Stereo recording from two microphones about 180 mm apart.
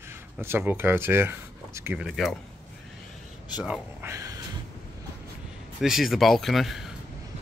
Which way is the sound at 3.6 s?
15° right (ahead or behind).